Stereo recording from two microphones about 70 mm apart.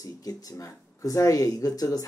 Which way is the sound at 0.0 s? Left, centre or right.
Left.